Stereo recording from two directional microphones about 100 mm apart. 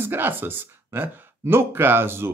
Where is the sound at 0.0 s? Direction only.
20° right (ahead or behind).